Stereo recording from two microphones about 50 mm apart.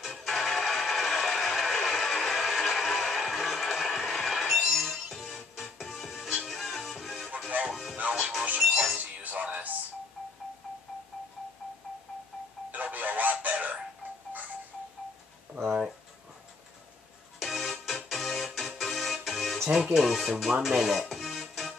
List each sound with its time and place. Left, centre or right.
0.2 s music: centre
7.4 s music: right
12.7 s music: right
15.6 s a sound: centre
17.4 s music: centre
19.9 s speech: centre
21.0 s music: centre